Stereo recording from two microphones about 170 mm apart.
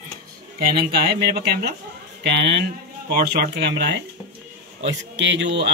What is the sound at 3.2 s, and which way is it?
Speech, 80° right.